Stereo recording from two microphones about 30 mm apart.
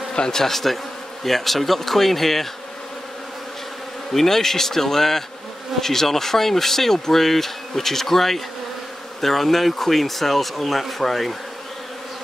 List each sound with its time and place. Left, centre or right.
0.1 s speech: left
0.4 s speech: centre
4.1 s speech: centre